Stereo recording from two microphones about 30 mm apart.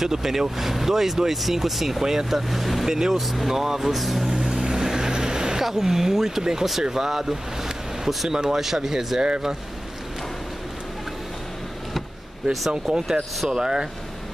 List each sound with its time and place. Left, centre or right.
0.0 s speech: centre
4.6 s vehicle: centre
5.6 s speech: centre
12.9 s speech: right